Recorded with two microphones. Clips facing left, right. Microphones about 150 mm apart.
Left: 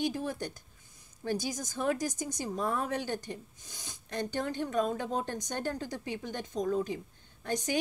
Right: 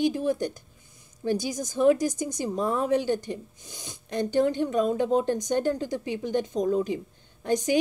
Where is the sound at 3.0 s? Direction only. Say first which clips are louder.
Right 9 dB; 15° right (ahead or behind).